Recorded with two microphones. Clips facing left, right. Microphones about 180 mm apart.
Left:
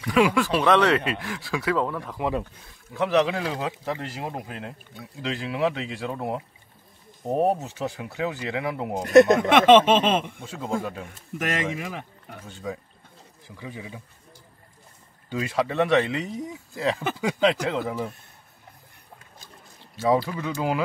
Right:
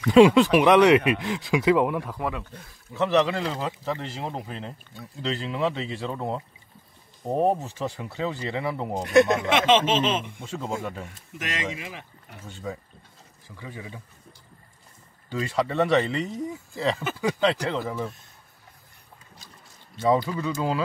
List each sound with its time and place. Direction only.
0.0 s speech: 25° right (ahead or behind)
3.0 s speech: 5° left (ahead or behind)
9.3 s speech: 55° left (ahead or behind)
10.4 s speech: 10° left (ahead or behind)
11.3 s speech: 50° left (ahead or behind)
13.6 s speech: 15° left (ahead or behind)
15.2 s speech: 10° left (ahead or behind)
20.0 s speech: 10° left (ahead or behind)